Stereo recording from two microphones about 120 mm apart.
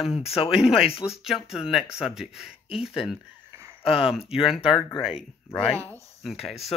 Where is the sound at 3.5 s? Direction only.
20° right (ahead or behind).